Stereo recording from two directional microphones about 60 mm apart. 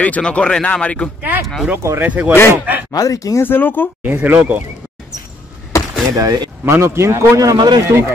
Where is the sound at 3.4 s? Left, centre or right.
Left.